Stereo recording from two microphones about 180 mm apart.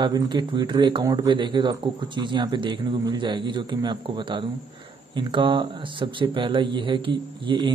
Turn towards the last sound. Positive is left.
turn(degrees=-25)  # may be behind; listen again after turning